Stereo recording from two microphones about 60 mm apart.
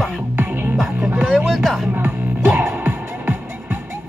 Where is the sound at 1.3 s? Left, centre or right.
Centre.